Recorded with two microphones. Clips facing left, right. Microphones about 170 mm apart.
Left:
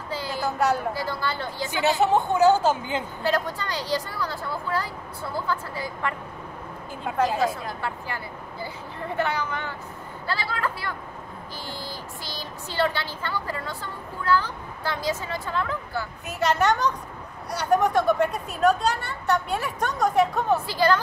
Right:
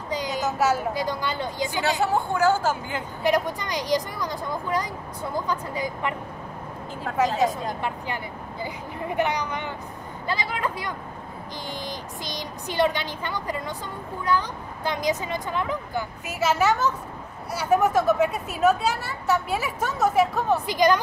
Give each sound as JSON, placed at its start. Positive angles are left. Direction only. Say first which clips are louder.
{"t": 0.1, "sound": "a sound", "louder": "right 2 dB", "side_deg": -15}
{"t": 0.6, "sound": "a woman's voice", "louder": "even", "side_deg": -5}
{"t": 0.9, "sound": "speech", "louder": "right 2 dB", "side_deg": -15}
{"t": 2.0, "sound": "a woman's voice", "louder": "left 4 dB", "side_deg": 20}
{"t": 3.3, "sound": "speech", "louder": "right 3 dB", "side_deg": -15}
{"t": 7.3, "sound": "speech", "louder": "right 2 dB", "side_deg": -20}
{"t": 16.3, "sound": "a woman's voice", "louder": "even", "side_deg": -5}
{"t": 20.6, "sound": "speech", "louder": "right 2 dB", "side_deg": -15}